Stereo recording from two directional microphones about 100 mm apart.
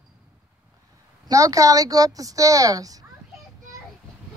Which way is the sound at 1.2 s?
35° right (ahead or behind).